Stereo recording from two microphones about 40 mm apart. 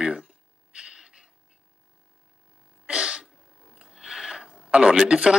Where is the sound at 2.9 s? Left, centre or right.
Right.